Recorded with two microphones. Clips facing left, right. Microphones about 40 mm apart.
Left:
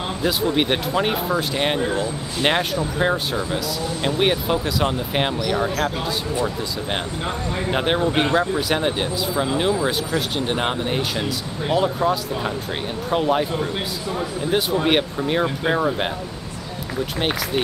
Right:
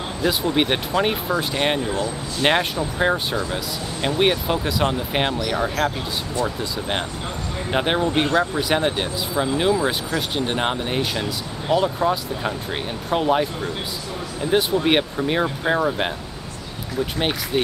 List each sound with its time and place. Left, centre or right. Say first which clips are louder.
0.2 s speech: right 1 dB; centre
7.7 s speech: right 1 dB; centre